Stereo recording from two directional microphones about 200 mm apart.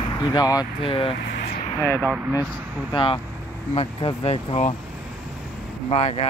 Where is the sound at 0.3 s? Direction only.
20° left (ahead or behind).